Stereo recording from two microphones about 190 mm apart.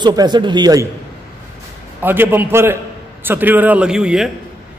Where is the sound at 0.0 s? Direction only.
20° right (ahead or behind).